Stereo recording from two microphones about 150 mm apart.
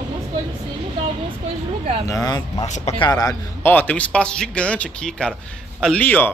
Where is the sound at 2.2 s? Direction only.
25° left (ahead or behind).